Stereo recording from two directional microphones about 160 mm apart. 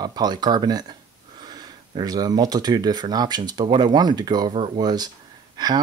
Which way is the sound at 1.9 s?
25° right (ahead or behind).